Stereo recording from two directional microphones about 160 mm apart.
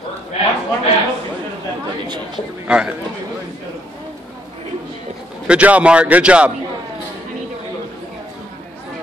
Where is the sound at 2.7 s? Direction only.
5° right (ahead or behind).